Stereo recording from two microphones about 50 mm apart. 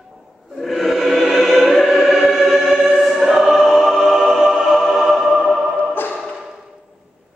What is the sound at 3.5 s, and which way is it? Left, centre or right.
Music, centre.